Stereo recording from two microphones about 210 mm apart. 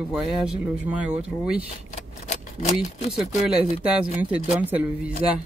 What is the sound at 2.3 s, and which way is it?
Speech, 35° left (ahead or behind).